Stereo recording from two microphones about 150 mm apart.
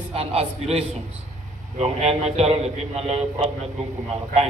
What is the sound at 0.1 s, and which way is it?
A man's voice, 40° right (ahead or behind).